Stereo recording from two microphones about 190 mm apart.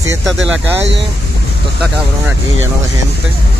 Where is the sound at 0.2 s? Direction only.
Centre (ahead or behind).